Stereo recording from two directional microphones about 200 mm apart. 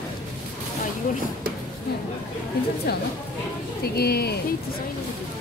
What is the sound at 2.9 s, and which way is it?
Speech, 50° left (ahead or behind).